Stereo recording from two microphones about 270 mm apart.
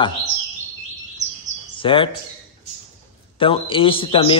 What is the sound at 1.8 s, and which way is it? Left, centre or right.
Speech, centre.